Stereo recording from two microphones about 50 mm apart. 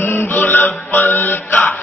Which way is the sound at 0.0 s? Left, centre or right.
Left.